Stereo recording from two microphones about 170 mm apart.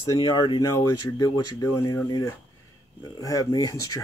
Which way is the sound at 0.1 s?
25° left (ahead or behind).